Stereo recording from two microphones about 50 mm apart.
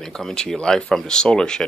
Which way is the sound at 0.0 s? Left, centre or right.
Centre.